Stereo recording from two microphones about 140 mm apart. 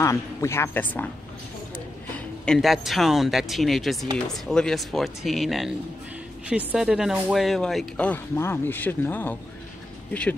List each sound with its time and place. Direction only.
0.0 s a woman's voice: 20° left (ahead or behind)
2.4 s speech: 5° left (ahead or behind)